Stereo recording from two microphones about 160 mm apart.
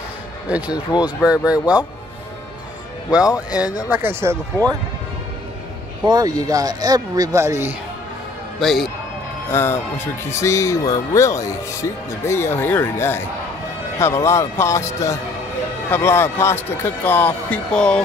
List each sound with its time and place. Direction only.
0.5 s speech: 5° right (ahead or behind)
3.3 s speech: 10° right (ahead or behind)
6.0 s speech: 25° right (ahead or behind)
8.5 s a man's voice: centre (ahead or behind)
9.5 s a man's voice: 15° left (ahead or behind)